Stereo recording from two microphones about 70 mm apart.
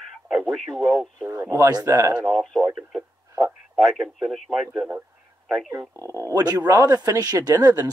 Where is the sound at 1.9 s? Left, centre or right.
Right.